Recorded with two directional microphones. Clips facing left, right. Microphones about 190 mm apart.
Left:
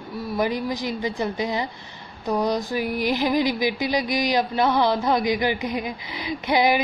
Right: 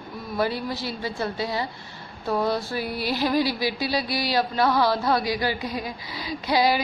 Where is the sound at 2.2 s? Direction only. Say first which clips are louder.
Left 1 dB; 15° left (ahead or behind).